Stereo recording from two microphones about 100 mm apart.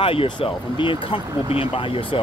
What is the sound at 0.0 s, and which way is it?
Speech, 65° left (ahead or behind).